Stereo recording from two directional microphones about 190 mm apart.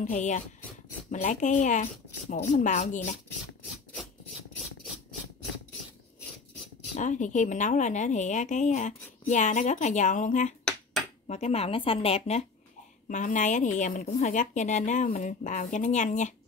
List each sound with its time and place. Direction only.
0.0 s a woman's voice: 40° left (ahead or behind)
7.0 s a woman's voice: 40° left (ahead or behind)
10.6 s a sound: 5° left (ahead or behind)
11.2 s a woman's voice: 35° left (ahead or behind)